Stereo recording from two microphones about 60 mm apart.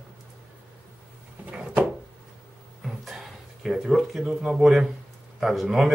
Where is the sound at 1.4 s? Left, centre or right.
Right.